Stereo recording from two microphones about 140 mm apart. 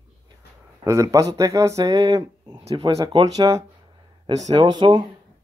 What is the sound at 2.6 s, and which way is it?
Speech, 45° right (ahead or behind).